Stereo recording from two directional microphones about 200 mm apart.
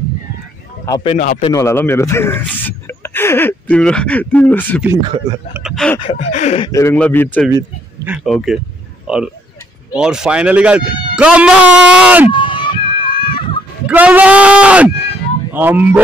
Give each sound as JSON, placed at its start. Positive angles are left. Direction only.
{"t": 0.8, "sound": "gasp", "side_deg": 20}
{"t": 1.1, "sound": "speech", "side_deg": 40}
{"t": 1.4, "sound": "speech", "side_deg": 15}
{"t": 5.9, "sound": "gasp", "side_deg": 30}
{"t": 6.7, "sound": "speech", "side_deg": 15}
{"t": 7.5, "sound": "oink", "side_deg": -10}
{"t": 8.2, "sound": "speech", "side_deg": 0}
{"t": 12.3, "sound": "a sound", "side_deg": 25}
{"t": 13.8, "sound": "speech", "side_deg": -5}